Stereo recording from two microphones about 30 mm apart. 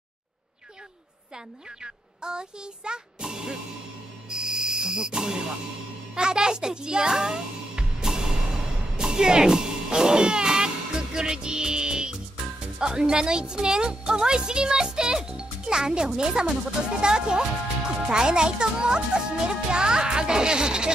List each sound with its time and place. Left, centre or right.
1.8 s speech: right
4.3 s insect: right
6.1 s a child's voice: right